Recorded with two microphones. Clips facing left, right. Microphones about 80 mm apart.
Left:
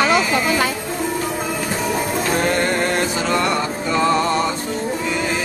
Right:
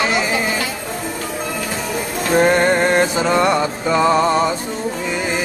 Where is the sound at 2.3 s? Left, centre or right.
Right.